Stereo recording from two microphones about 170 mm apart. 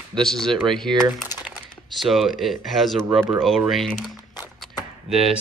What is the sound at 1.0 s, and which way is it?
Speech, 10° right (ahead or behind).